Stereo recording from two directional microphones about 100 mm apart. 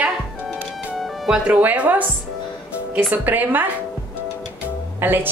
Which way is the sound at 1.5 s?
15° right (ahead or behind).